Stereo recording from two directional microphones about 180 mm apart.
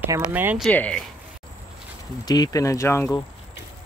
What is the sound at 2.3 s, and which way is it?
Speech, 20° left (ahead or behind).